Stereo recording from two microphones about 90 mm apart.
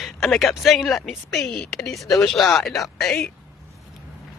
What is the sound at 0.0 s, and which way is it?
Speech, centre (ahead or behind).